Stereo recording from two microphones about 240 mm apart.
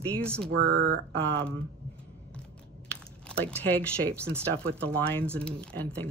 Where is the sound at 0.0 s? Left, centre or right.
Centre.